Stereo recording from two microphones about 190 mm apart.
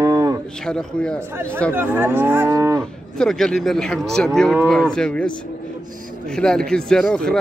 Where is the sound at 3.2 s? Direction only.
Centre (ahead or behind).